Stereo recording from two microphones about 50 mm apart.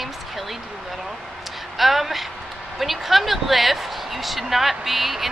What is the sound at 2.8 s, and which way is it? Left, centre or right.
A woman's voice, centre.